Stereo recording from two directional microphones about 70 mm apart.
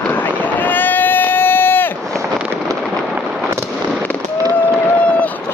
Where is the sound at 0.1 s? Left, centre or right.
Left.